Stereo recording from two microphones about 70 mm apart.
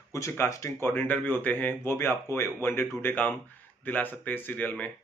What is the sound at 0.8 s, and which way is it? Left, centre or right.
Speech, left.